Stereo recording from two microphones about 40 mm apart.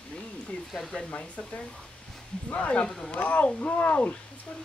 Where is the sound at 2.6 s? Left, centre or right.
Left.